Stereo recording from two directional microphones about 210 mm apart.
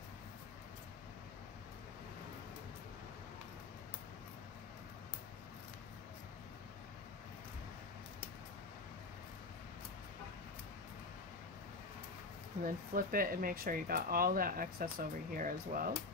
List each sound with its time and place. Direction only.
12.9 s speech: 40° right (ahead or behind)